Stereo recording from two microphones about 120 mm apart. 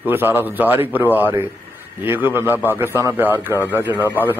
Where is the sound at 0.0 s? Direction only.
15° right (ahead or behind).